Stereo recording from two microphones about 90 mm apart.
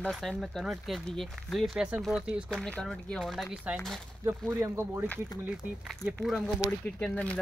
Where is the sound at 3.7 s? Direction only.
15° right (ahead or behind).